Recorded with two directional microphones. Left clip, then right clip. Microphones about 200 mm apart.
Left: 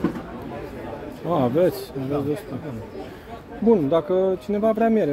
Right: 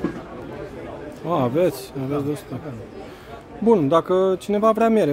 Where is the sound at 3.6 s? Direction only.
25° right (ahead or behind).